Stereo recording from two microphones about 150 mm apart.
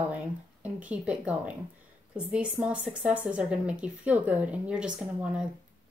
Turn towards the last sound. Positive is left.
turn(degrees=-5)  # may be behind; listen again after turning